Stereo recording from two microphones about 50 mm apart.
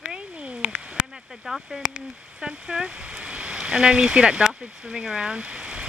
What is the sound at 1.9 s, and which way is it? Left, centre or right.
Speech, right.